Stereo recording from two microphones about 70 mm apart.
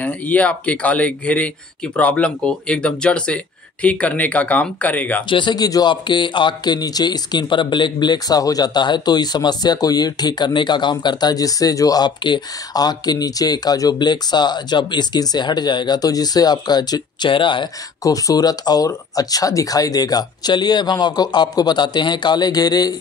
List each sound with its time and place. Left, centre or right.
0.0 s speech: left
5.4 s speech: left
12.0 s speech: left
18.0 s speech: left